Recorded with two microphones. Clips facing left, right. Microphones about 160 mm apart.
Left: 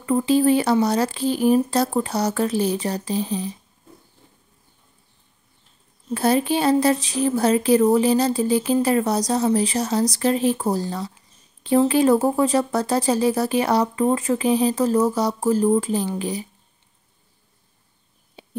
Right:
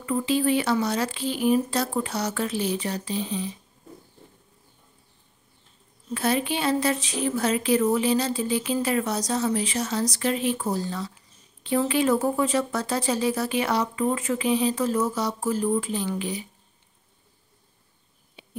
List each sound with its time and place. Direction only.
0.0 s speech: 40° left (ahead or behind)
6.1 s speech: 35° left (ahead or behind)
18.4 s a sound: 35° left (ahead or behind)